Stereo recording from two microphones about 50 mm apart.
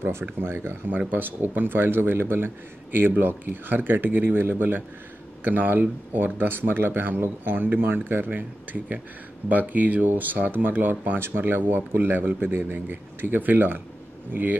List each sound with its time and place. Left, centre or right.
0.0 s speech: right